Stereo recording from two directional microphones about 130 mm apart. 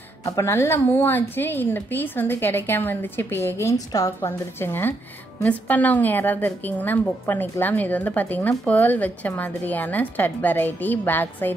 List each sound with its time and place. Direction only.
0.2 s a woman's voice: 20° left (ahead or behind)